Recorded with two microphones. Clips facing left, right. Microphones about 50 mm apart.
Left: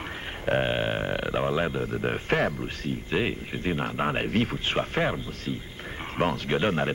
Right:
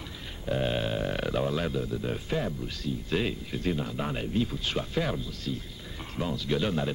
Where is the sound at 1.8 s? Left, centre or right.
Left.